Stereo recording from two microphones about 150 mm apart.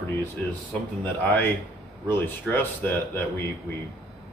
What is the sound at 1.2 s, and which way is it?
Speech, 10° left (ahead or behind).